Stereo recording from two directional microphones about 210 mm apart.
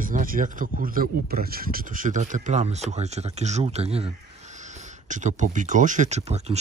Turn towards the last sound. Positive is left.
turn(degrees=-30)  # may be behind; listen again after turning